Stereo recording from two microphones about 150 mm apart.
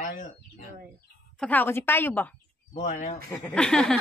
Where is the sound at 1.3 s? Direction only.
10° left (ahead or behind).